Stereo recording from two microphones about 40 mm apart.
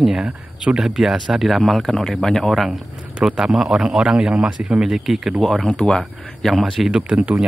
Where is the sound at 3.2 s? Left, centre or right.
Centre.